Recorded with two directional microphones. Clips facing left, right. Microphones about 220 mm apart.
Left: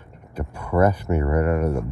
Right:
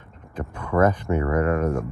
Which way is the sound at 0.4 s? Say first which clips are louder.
Left 1 dB; 10° left (ahead or behind).